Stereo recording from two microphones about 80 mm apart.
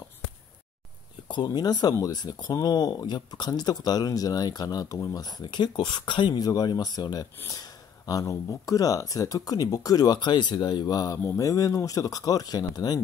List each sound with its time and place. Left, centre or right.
1.3 s speech: left
5.4 s speech: left
6.4 s speech: left
8.1 s speech: left